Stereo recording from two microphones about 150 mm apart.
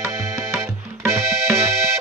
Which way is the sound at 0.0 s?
20° right (ahead or behind).